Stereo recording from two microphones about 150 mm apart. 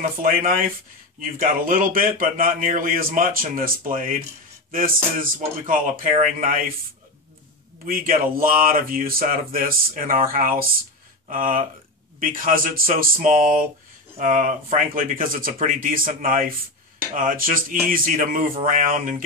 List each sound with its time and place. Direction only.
0.2 s a man's voice: 70° right (ahead or behind)
7.8 s a man's voice: 70° right (ahead or behind)